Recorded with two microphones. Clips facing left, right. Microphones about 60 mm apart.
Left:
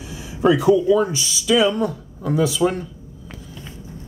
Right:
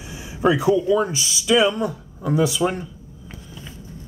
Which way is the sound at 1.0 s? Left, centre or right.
Centre.